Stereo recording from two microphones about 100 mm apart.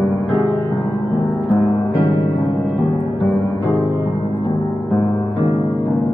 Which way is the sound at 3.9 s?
50° left (ahead or behind).